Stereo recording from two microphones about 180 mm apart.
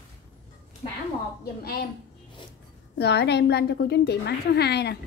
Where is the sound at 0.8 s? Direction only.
45° left (ahead or behind).